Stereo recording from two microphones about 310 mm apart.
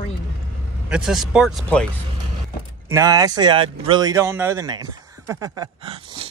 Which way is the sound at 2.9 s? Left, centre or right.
Centre.